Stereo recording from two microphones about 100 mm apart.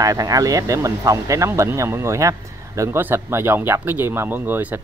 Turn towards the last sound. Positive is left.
turn(degrees=-15)  # may be behind; listen again after turning